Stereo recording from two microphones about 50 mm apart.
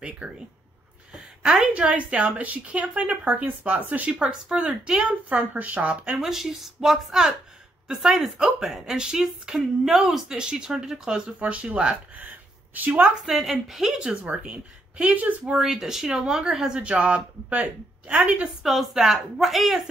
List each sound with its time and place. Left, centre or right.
0.2 s speech: right
1.1 s a sound: centre
1.7 s speech: right
4.3 s a woman's voice: centre
5.3 s speech: right
6.1 s a woman's voice: centre
12.2 s a sound: right
13.2 s a woman's voice: centre
14.2 s speech: right
15.5 s a woman's voice: centre; by 18.5 s right
18.6 s a woman's voice: centre